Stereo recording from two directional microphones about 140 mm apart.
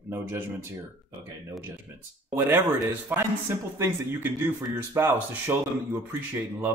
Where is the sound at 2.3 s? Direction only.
15° right (ahead or behind).